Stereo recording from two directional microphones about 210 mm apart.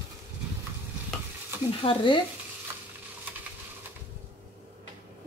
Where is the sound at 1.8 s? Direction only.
25° left (ahead or behind).